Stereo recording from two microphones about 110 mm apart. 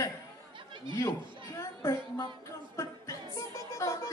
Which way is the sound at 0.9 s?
30° left (ahead or behind).